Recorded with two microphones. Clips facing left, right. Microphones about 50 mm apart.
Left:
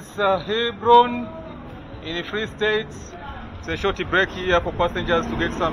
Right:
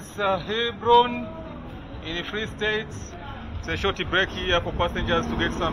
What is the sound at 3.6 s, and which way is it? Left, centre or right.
Speech, right.